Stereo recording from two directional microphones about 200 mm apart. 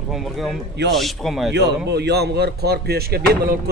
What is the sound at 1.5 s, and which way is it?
Speech, 55° right (ahead or behind).